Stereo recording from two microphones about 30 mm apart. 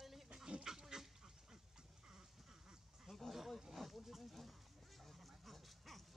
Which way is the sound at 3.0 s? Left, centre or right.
Centre.